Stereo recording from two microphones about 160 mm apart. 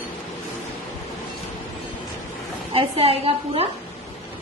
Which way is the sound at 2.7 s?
40° right (ahead or behind).